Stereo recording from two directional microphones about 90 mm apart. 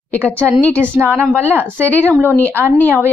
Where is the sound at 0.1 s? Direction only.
15° left (ahead or behind).